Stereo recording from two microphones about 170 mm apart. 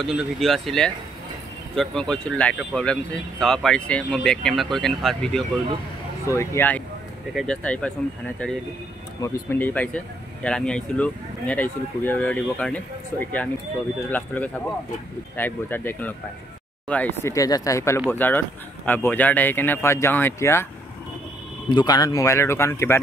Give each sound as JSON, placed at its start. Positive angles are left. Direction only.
{"t": 0.0, "sound": "speech", "side_deg": 0}
{"t": 6.2, "sound": "speech", "side_deg": 15}
{"t": 9.2, "sound": "speech", "side_deg": 15}
{"t": 21.6, "sound": "speech", "side_deg": 25}